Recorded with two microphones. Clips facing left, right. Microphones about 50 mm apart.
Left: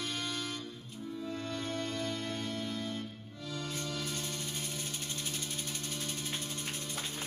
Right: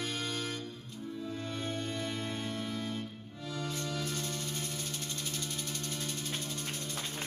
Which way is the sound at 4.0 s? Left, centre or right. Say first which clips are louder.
Right 2 dB; centre.